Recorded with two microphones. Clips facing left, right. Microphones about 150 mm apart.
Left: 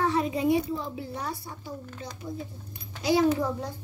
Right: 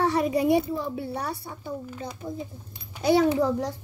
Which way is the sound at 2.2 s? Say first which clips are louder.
Right 1 dB; 45° right (ahead or behind).